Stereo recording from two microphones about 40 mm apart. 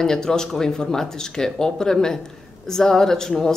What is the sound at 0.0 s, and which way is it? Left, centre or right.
Speech, centre.